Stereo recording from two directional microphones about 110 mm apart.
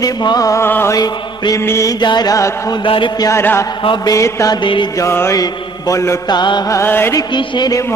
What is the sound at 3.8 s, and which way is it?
Music, 50° left (ahead or behind).